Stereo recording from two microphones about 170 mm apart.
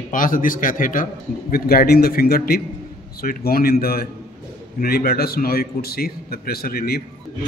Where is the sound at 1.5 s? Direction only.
65° left (ahead or behind).